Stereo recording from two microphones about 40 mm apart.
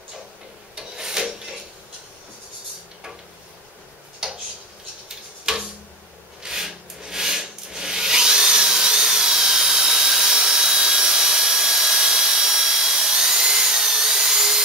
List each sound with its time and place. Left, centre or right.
0.7 s a sound: centre
4.2 s tick-tock: centre
6.4 s rub: centre